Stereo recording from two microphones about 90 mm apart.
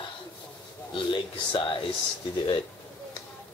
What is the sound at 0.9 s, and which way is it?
Speech, 65° left (ahead or behind).